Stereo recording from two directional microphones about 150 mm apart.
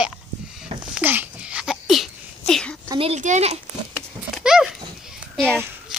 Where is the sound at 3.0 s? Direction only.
50° right (ahead or behind).